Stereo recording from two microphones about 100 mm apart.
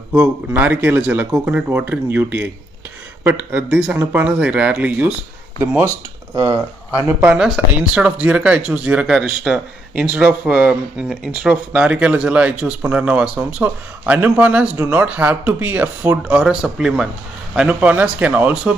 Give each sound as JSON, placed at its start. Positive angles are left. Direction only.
{"t": 0.1, "sound": "speech", "side_deg": -20}
{"t": 6.3, "sound": "speech", "side_deg": -40}
{"t": 7.3, "sound": "speech", "side_deg": -5}